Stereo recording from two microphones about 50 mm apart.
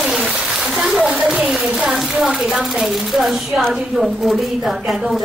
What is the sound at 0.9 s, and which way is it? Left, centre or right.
A woman's voice, centre.